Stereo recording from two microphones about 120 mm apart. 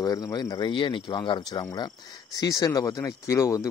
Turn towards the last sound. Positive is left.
turn(degrees=25)  # may be behind; listen again after turning